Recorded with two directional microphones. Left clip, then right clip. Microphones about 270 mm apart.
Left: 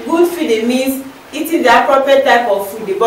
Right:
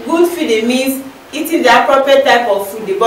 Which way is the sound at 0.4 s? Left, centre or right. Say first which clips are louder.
Right 1 dB; centre.